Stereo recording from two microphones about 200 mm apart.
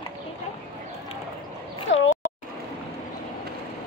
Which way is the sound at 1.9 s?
65° left (ahead or behind).